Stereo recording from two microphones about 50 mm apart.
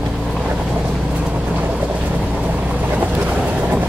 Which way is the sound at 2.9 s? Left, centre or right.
Right.